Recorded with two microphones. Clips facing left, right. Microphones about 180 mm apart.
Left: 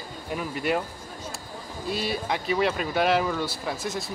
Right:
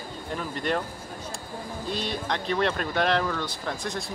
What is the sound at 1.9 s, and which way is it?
Speech, 5° left (ahead or behind).